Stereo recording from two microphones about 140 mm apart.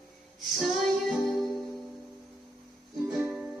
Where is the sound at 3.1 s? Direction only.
5° right (ahead or behind).